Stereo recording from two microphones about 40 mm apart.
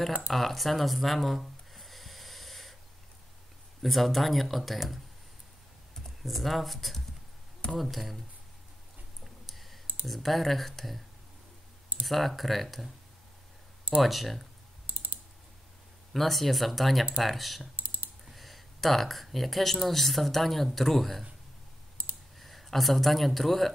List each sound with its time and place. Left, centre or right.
0.3 s speech: centre
1.7 s snort: centre
3.8 s speech: centre
6.2 s speech: centre
9.2 s clicking: centre
10.0 s speech: centre
12.1 s speech: centre
14.0 s speech: centre
14.9 s computer keyboard: right
16.1 s speech: centre
17.7 s typing: right
18.2 s speech: centre
22.4 s speech: centre